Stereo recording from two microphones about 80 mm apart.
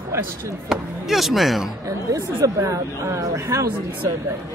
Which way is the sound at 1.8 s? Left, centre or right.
Right.